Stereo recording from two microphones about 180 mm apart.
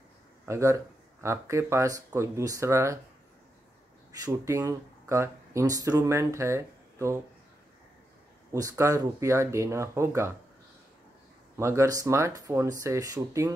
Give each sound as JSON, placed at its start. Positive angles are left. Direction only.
{"t": 0.5, "sound": "speech", "side_deg": -15}
{"t": 4.2, "sound": "speech", "side_deg": -15}
{"t": 8.5, "sound": "speech", "side_deg": -20}
{"t": 11.5, "sound": "speech", "side_deg": -15}